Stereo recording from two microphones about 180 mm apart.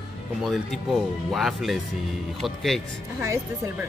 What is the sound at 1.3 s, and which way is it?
Speech, centre (ahead or behind).